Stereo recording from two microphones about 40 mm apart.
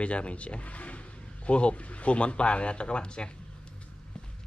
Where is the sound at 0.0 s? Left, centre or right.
Left.